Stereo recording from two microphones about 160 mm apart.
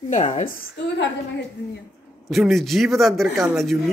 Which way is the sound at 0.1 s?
50° left (ahead or behind).